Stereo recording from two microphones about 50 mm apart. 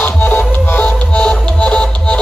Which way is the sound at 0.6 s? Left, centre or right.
Left.